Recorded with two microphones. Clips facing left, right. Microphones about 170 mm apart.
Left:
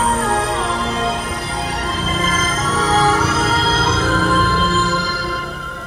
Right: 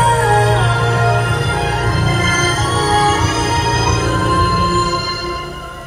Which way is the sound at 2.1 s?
35° right (ahead or behind).